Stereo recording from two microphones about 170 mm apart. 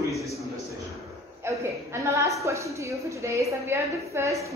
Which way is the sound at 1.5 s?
15° right (ahead or behind).